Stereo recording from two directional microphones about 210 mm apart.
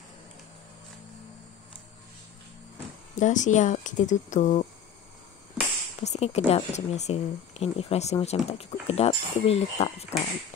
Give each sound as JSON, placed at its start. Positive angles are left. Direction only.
{"t": 3.2, "sound": "speech", "side_deg": 35}
{"t": 5.9, "sound": "a woman's voice", "side_deg": 30}